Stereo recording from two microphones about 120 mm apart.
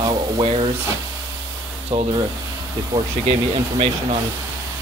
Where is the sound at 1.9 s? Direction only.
45° right (ahead or behind).